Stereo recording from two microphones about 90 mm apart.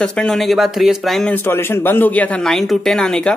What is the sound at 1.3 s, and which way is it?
Speech, 25° left (ahead or behind).